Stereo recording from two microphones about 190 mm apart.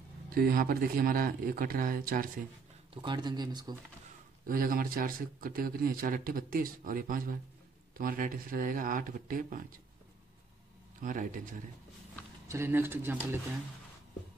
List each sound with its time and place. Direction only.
0.3 s speech: 50° right (ahead or behind)
2.9 s speech: 25° right (ahead or behind)
4.5 s speech: 50° right (ahead or behind)
11.0 s speech: 45° right (ahead or behind)
12.4 s speech: 15° right (ahead or behind)